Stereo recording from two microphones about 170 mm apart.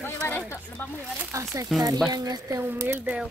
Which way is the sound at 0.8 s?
15° left (ahead or behind).